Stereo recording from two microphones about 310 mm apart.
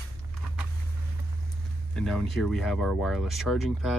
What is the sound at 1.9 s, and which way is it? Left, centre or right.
Speech, centre.